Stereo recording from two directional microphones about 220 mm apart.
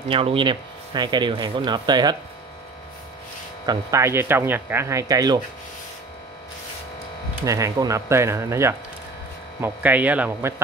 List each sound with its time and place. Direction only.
0.1 s speech: 25° right (ahead or behind)
3.6 s speech: 15° right (ahead or behind)
7.4 s speech: 15° right (ahead or behind)